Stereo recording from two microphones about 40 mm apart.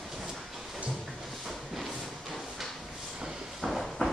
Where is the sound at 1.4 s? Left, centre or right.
Centre.